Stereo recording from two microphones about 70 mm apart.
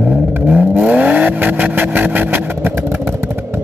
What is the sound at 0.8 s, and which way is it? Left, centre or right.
Vehicle, centre.